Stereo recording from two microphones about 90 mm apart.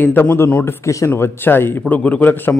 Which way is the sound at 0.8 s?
35° left (ahead or behind).